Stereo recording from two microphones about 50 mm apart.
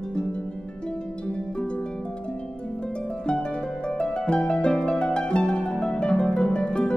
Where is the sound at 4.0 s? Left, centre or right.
Centre.